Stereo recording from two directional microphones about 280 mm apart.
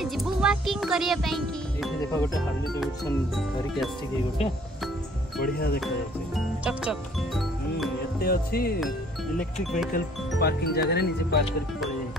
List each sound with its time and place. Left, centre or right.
0.0 s speech: centre
5.4 s speech: left
6.3 s speech: centre
8.2 s speech: left
9.4 s speech: centre
9.9 s speech: left